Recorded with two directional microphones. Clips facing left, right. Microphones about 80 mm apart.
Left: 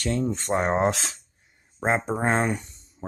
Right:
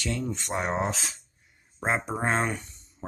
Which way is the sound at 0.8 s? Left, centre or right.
Left.